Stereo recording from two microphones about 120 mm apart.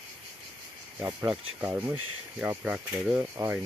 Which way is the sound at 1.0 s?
40° right (ahead or behind).